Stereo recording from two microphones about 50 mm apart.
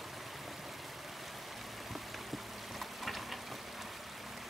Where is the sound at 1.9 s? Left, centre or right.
Centre.